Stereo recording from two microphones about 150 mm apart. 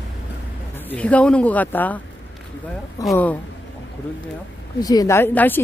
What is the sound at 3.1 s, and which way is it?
Speech, 10° left (ahead or behind).